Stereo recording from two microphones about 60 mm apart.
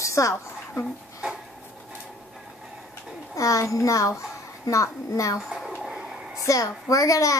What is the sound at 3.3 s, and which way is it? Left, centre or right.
A child's voice, left.